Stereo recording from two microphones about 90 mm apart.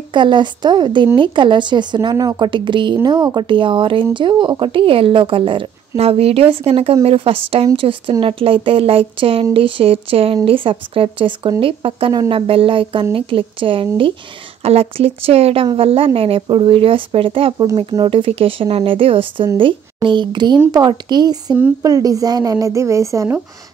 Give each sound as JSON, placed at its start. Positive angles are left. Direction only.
{"t": 0.1, "sound": "speech", "side_deg": -60}
{"t": 2.1, "sound": "a woman's voice", "side_deg": -40}
{"t": 2.4, "sound": "speech", "side_deg": -65}
{"t": 11.6, "sound": "speech", "side_deg": -90}
{"t": 14.6, "sound": "speech", "side_deg": -90}
{"t": 19.5, "sound": "a woman's voice", "side_deg": -65}